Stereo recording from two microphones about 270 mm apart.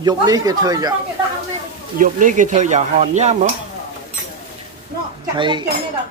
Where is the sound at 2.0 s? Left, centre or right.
Right.